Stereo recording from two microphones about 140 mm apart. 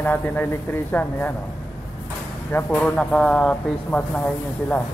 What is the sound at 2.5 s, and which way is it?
Speech, 10° left (ahead or behind).